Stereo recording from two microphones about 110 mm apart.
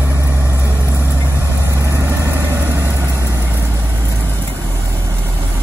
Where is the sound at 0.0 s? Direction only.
20° right (ahead or behind).